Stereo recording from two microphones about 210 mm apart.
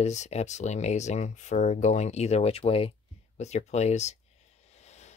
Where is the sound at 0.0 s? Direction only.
35° left (ahead or behind).